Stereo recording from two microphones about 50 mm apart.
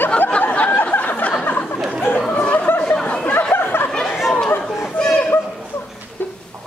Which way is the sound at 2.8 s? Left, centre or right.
Left.